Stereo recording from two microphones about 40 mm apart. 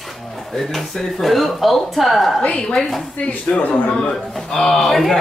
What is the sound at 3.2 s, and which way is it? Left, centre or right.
Speech, left.